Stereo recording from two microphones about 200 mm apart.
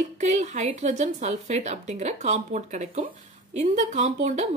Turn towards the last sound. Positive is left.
turn(degrees=-35)  # may be behind; listen again after turning